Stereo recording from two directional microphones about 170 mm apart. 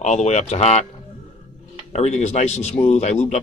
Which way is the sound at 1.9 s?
40° left (ahead or behind).